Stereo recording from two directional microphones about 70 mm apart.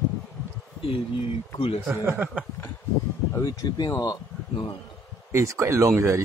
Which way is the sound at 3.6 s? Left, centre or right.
Left.